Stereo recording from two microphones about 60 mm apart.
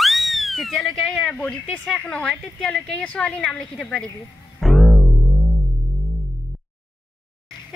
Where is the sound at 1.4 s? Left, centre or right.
Centre.